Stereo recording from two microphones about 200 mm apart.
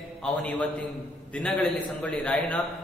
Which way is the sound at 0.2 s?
5° left (ahead or behind).